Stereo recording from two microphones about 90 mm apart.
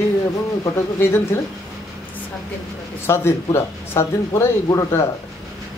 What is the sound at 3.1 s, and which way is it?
Speech, 30° left (ahead or behind).